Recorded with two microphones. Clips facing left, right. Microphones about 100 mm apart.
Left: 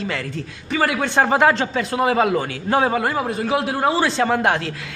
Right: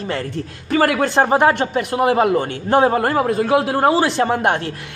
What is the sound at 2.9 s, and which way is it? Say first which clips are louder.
A man's voice: right 4 dB; 50° right (ahead or behind).